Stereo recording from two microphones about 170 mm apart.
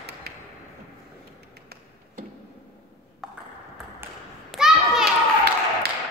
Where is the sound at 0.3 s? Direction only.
70° right (ahead or behind).